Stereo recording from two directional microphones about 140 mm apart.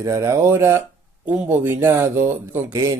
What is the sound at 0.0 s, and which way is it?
Speech, 25° right (ahead or behind).